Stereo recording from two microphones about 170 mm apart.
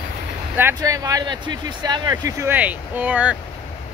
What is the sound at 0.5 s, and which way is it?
Speech, 15° right (ahead or behind).